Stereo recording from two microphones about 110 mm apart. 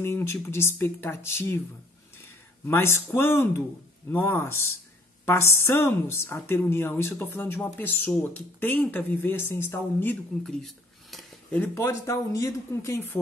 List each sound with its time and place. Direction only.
0.0 s a woman's voice: 25° left (ahead or behind)
2.6 s a woman's voice: 20° left (ahead or behind)
10.4 s a sound: 5° left (ahead or behind)
11.5 s a woman's voice: 20° left (ahead or behind)